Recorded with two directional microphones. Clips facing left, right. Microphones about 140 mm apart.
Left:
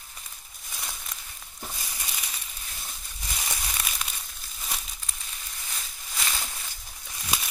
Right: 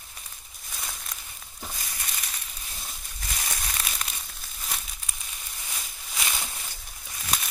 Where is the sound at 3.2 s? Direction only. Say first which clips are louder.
Even; 10° left (ahead or behind).